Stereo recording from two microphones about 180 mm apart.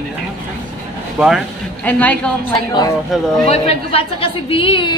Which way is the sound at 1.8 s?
10° left (ahead or behind).